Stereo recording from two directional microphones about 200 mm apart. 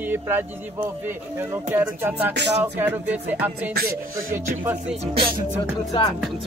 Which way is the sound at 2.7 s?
10° right (ahead or behind).